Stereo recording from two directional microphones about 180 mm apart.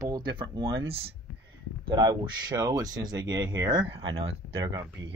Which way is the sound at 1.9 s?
20° right (ahead or behind).